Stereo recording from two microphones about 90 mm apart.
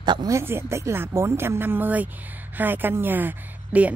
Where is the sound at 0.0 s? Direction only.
55° right (ahead or behind).